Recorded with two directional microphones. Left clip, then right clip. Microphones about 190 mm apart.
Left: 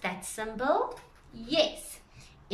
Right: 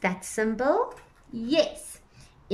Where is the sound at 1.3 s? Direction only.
10° right (ahead or behind).